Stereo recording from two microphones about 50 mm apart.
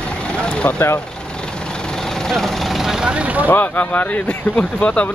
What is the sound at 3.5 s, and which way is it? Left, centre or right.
Speech, left.